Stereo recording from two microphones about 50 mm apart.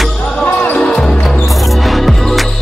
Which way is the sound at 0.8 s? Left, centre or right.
Centre.